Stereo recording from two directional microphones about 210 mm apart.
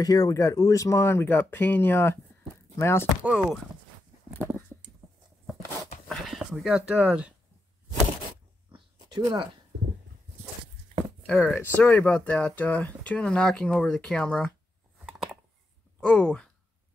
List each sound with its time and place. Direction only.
0.0 s speech: 20° left (ahead or behind)
3.2 s speech: 5° right (ahead or behind)
6.0 s speech: centre (ahead or behind)
8.7 s a sound: 20° right (ahead or behind)
11.2 s speech: 5° left (ahead or behind)
16.0 s speech: 5° left (ahead or behind)